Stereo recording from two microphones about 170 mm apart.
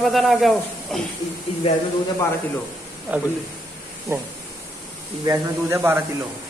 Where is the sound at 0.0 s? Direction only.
Centre (ahead or behind).